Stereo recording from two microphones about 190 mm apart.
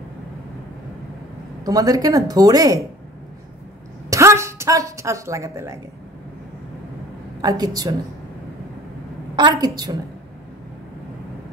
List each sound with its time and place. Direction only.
1.6 s speech: 20° right (ahead or behind)
4.1 s a woman's voice: 15° right (ahead or behind)
7.4 s speech: 20° right (ahead or behind)
9.3 s speech: 25° right (ahead or behind)